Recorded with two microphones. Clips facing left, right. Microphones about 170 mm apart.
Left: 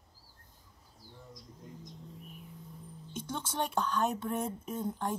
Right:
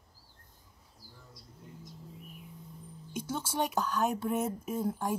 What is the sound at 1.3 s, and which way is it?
Bird, 10° right (ahead or behind).